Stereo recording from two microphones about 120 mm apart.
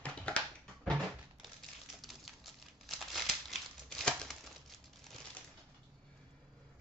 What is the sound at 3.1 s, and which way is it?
Crumpling, centre (ahead or behind).